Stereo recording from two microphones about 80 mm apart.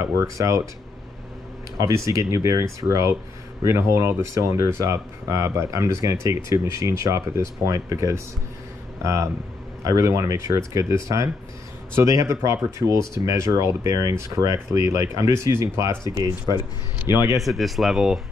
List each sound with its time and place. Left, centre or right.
0.0 s speech: right
1.8 s speech: right
17.1 s speech: left
17.4 s speech: centre